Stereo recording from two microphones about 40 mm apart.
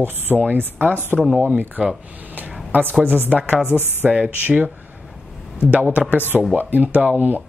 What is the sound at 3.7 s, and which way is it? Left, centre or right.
Speech, right.